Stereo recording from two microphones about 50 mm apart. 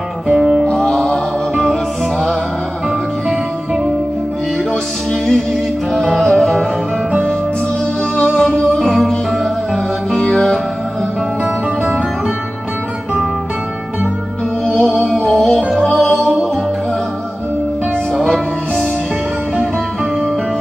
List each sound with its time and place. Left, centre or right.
0.3 s music: centre
0.7 s music: centre
5.1 s music: centre
8.4 s music: centre
8.7 s music: centre
10.1 s music: centre
11.4 s music: right
15.0 s music: centre